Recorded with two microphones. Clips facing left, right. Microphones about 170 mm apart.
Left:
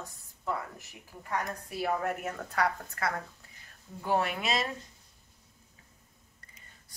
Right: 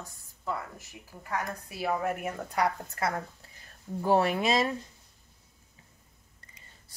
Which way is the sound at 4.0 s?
35° right (ahead or behind).